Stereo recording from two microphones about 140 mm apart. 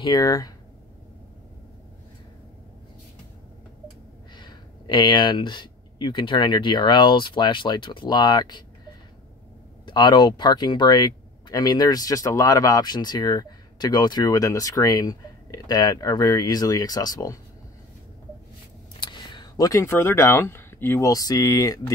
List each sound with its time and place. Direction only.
0.0 s speech: 30° left (ahead or behind)
4.4 s speech: 35° left (ahead or behind)
18.9 s speech: 35° left (ahead or behind)